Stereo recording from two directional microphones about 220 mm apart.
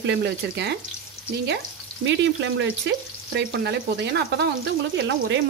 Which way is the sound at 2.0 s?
55° right (ahead or behind).